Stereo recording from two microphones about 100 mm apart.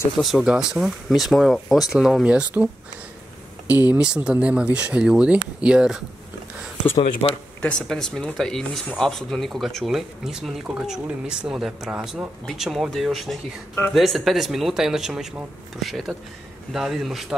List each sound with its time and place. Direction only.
0.2 s speech: centre (ahead or behind)
3.9 s speech: 10° right (ahead or behind)
7.0 s speech: 70° left (ahead or behind)
7.6 s speech: 5° left (ahead or behind)